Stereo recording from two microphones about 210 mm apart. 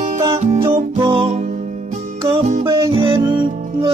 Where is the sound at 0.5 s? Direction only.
25° right (ahead or behind).